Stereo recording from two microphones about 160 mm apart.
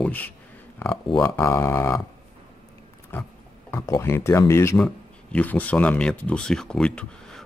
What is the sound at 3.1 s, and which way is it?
Pig, 15° left (ahead or behind).